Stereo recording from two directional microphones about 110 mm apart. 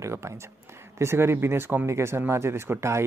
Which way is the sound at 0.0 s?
25° right (ahead or behind).